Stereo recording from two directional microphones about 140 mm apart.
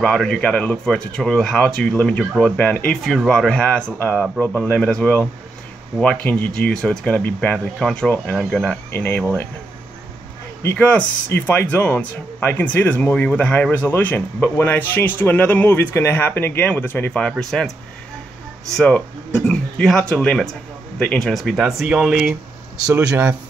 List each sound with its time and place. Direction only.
0.0 s speech: 5° left (ahead or behind)
10.6 s speech: 10° left (ahead or behind)
18.8 s speech: 5° left (ahead or behind)
22.9 s speech: 15° right (ahead or behind)